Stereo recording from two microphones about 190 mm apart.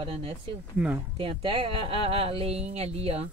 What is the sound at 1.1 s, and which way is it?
Speech, 25° right (ahead or behind).